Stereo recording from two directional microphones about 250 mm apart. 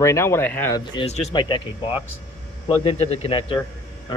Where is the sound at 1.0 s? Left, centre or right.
Left.